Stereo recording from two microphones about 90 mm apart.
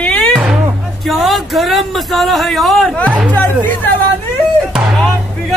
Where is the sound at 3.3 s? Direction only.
20° left (ahead or behind).